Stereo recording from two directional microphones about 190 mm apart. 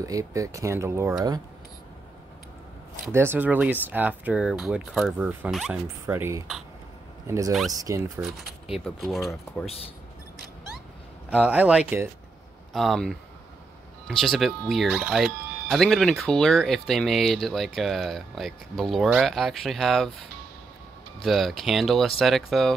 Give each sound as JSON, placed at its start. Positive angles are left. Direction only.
{"t": 0.0, "sound": "speech", "side_deg": -15}
{"t": 3.1, "sound": "speech", "side_deg": -10}
{"t": 8.2, "sound": "speech", "side_deg": -5}
{"t": 11.2, "sound": "speech", "side_deg": -5}